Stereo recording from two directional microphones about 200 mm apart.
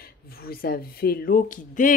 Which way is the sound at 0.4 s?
50° left (ahead or behind).